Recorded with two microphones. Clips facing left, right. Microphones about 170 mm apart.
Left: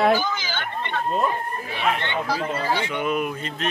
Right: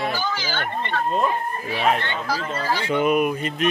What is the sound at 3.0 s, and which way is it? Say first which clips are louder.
Speech: right 5 dB; 15° right (ahead or behind).